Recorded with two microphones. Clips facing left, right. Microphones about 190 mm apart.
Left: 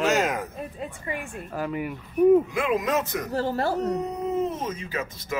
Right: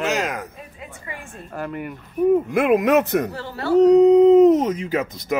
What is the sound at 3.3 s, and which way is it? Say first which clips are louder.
Speech: right 2 dB; 40° left (ahead or behind).